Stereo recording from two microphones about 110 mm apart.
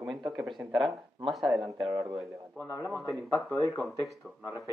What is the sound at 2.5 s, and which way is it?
Speech, 20° left (ahead or behind).